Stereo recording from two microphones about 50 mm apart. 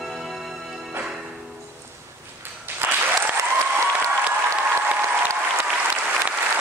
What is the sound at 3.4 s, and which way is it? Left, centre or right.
Applause, right.